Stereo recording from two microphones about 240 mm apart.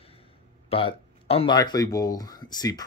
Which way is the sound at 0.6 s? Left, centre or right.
Left.